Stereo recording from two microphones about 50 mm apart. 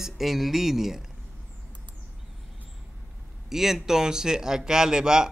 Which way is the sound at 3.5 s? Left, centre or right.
Centre.